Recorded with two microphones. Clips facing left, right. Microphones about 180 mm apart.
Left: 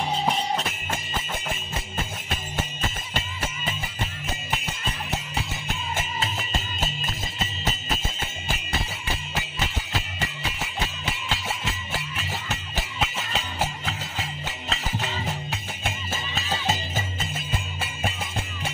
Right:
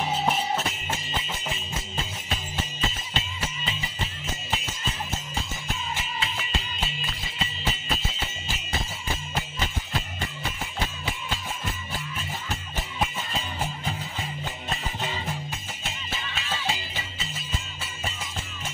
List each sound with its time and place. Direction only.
0.1 s music: 5° right (ahead or behind)
3.2 s music: 50° left (ahead or behind)
5.9 s music: 45° left (ahead or behind)
9.0 s music: 75° left (ahead or behind)
15.5 s music: 50° left (ahead or behind)